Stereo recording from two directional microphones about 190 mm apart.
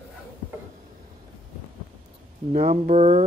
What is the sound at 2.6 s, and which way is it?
Speech, 35° right (ahead or behind).